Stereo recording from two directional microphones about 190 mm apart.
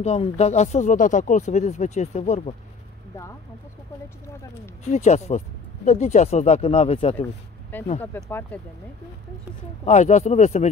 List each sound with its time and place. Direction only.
0.0 s speech: 35° left (ahead or behind)
4.9 s speech: 35° left (ahead or behind)
7.7 s speech: 10° left (ahead or behind)
9.8 s speech: 40° left (ahead or behind)